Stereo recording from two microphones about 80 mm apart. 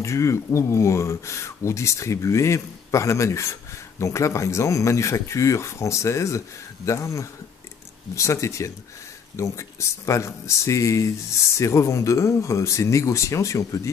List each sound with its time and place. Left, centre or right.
0.0 s speech: left